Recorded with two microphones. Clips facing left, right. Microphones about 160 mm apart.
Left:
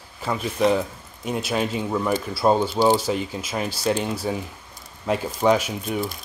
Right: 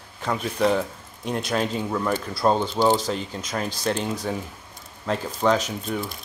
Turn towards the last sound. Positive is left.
turn(degrees=10)  # may be behind; listen again after turning